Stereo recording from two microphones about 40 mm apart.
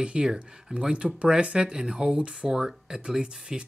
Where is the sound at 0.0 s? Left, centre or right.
Right.